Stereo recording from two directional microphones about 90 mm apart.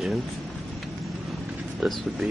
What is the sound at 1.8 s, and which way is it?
Speech, 5° right (ahead or behind).